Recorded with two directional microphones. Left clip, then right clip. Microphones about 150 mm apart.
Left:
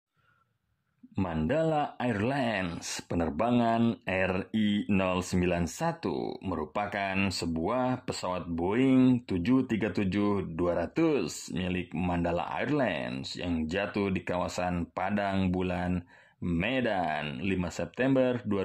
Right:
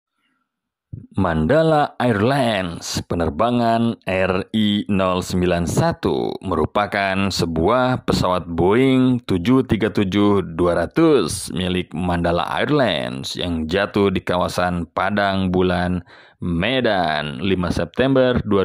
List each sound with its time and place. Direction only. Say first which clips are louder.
1.1 s speech: right 13 dB; 45° right (ahead or behind)